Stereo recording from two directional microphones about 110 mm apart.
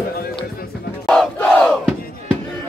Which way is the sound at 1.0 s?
5° left (ahead or behind).